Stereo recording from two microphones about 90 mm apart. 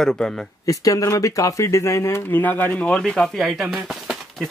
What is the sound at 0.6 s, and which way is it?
Speech, 40° left (ahead or behind).